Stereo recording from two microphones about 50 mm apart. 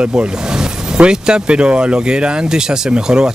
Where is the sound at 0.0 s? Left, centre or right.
Right.